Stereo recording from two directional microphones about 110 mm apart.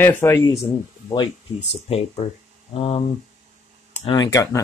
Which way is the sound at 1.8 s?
65° left (ahead or behind).